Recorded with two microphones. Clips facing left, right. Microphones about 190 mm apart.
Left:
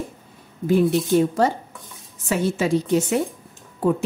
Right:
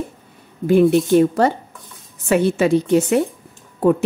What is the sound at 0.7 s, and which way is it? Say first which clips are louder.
Speech: right 5 dB; 60° right (ahead or behind).